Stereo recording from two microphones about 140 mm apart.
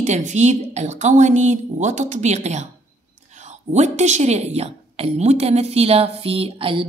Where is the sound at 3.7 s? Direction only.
55° right (ahead or behind).